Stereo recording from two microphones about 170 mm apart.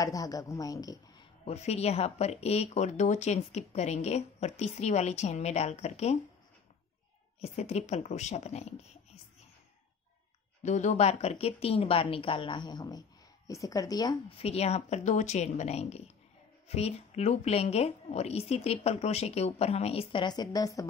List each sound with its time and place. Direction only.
0.0 s speech: 20° left (ahead or behind)
1.5 s speech: 40° left (ahead or behind)
7.3 s speech: 40° left (ahead or behind)
10.6 s speech: 45° left (ahead or behind); by 14.1 s 20° left (ahead or behind)
14.3 s speech: 35° left (ahead or behind); by 20.8 s 20° left (ahead or behind)